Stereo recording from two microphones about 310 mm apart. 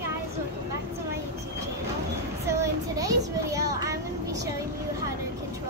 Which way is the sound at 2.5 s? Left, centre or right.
Centre.